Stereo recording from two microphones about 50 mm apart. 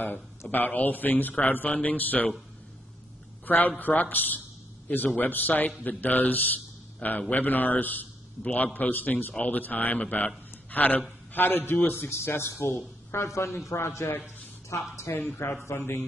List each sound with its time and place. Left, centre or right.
0.5 s a man's voice: left
3.4 s a man's voice: left
13.1 s a man's voice: left
15.7 s a man's voice: left